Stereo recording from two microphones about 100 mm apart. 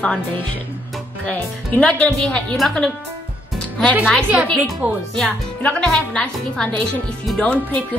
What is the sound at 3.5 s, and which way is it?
Music, 10° left (ahead or behind).